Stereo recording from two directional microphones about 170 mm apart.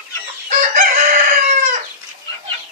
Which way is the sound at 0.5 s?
45° right (ahead or behind).